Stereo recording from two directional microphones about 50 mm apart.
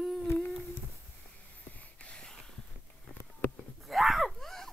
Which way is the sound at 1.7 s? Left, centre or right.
Left.